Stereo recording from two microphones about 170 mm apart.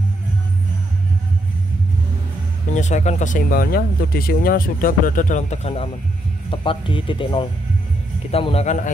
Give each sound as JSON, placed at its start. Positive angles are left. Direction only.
{"t": 2.7, "sound": "speech", "side_deg": 45}